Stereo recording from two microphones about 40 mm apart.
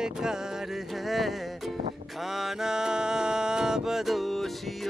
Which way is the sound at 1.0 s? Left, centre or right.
Centre.